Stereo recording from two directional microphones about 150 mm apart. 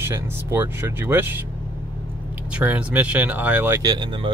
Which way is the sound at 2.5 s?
10° right (ahead or behind).